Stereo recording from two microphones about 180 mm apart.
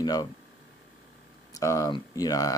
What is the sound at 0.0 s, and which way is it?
Speech, 20° left (ahead or behind).